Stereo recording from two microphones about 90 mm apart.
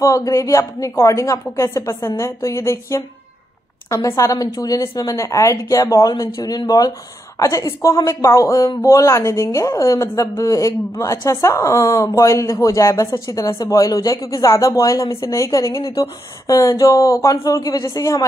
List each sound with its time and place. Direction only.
0.0 s speech: 35° left (ahead or behind)